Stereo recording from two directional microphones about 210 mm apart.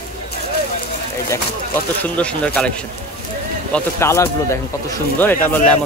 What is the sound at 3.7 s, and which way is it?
Speech, 15° left (ahead or behind).